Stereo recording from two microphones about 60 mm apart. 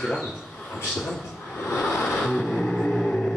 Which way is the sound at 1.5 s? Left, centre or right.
Left.